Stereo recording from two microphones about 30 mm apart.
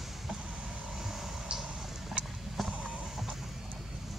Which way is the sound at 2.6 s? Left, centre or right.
Centre.